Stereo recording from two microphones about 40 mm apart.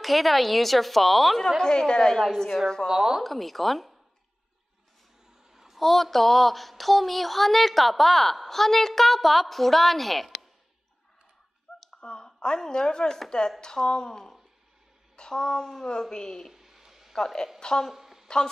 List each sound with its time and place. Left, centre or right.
0.0 s speech: centre
1.6 s a woman's voice: centre
2.1 s speech: centre
2.9 s speech: centre
3.3 s speech: centre
5.5 s a sound: centre
5.8 s speech: centre
11.9 s a sound: centre
12.5 s a woman's voice: centre
16.5 s a sound: centre
17.2 s a woman's voice: centre
17.9 s a sound: centre